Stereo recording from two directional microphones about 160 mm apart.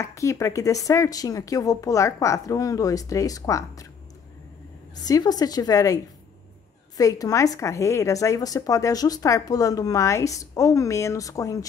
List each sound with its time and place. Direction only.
0.0 s a woman's voice: 20° left (ahead or behind)
5.0 s a woman's voice: 25° left (ahead or behind)
7.0 s a woman's voice: 20° left (ahead or behind)